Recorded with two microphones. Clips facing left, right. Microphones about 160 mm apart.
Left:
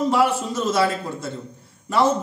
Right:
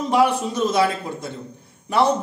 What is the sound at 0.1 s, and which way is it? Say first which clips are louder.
Speech: right 2 dB; 15° right (ahead or behind).